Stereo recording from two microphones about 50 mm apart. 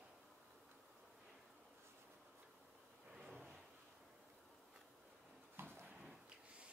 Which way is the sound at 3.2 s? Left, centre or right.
Centre.